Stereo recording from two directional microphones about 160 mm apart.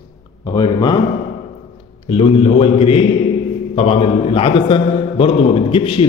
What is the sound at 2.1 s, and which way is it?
A man's voice, 35° left (ahead or behind).